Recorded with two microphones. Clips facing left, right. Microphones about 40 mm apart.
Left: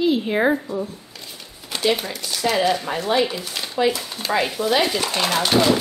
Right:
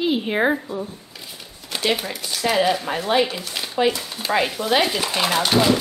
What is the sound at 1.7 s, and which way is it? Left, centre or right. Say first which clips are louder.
A woman's voice: left 1 dB; centre.